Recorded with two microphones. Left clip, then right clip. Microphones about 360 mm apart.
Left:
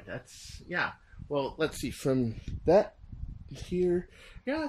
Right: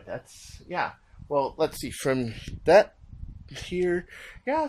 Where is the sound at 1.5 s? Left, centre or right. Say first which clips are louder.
Right 5 dB; centre.